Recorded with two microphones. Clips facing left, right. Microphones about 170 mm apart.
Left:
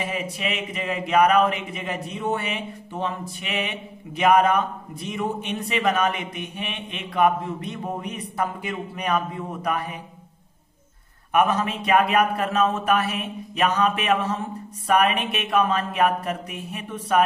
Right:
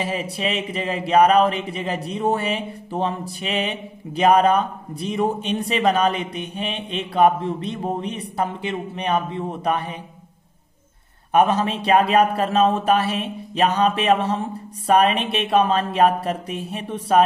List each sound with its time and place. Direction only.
0.0 s speech: 30° right (ahead or behind)
11.3 s speech: 30° right (ahead or behind)